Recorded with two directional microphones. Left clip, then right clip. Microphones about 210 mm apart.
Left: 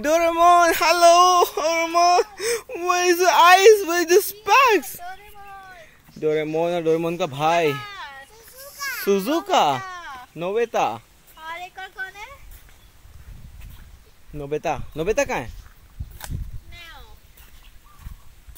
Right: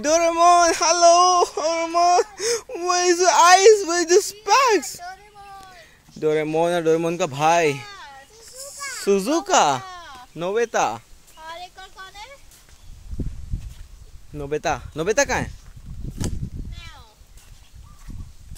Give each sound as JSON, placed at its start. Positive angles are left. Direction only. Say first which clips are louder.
{"t": 0.0, "sound": "speech", "louder": "even", "side_deg": 0}
{"t": 7.8, "sound": "children playing", "louder": "left 3 dB", "side_deg": 10}
{"t": 8.7, "sound": "children playing", "louder": "left 4 dB", "side_deg": 45}
{"t": 9.0, "sound": "speech", "louder": "right 2 dB", "side_deg": -5}
{"t": 14.3, "sound": "speech", "louder": "right 1 dB", "side_deg": -5}